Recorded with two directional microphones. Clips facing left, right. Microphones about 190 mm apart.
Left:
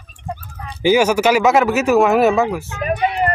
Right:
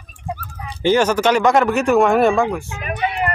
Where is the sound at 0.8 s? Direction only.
10° left (ahead or behind).